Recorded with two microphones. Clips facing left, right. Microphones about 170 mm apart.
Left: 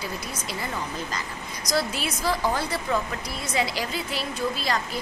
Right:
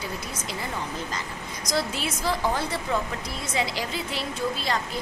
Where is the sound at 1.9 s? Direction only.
20° right (ahead or behind).